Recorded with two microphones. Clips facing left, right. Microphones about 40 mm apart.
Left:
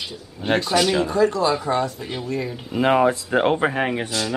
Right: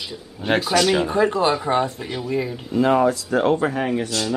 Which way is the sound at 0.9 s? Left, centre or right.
Right.